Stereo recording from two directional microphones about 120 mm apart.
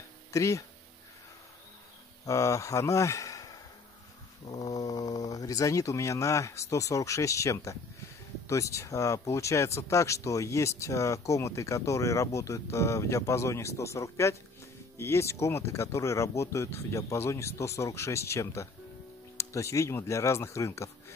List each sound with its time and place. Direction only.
0.3 s speech: 25° left (ahead or behind)
2.2 s speech: 25° left (ahead or behind)
4.6 s speech: 30° left (ahead or behind)